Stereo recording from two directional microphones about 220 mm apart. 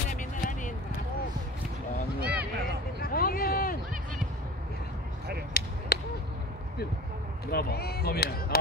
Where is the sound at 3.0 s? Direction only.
40° left (ahead or behind).